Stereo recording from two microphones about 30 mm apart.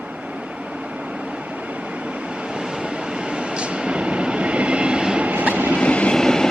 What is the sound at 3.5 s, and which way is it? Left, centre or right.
Train, right.